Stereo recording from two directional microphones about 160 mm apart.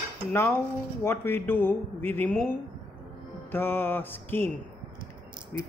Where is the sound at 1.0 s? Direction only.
15° left (ahead or behind).